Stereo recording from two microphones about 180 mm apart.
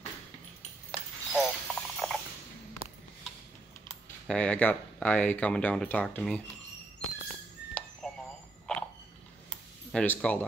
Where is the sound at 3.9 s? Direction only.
5° left (ahead or behind).